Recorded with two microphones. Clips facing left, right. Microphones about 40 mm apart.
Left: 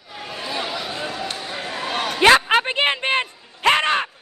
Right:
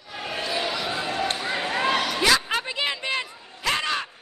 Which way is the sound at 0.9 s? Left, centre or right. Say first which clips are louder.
Right 1 dB; right.